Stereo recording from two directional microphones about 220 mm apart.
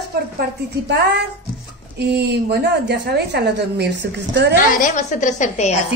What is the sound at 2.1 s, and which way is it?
A woman's voice, 50° right (ahead or behind).